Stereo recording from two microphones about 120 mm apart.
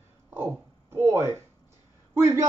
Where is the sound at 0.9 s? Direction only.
25° right (ahead or behind).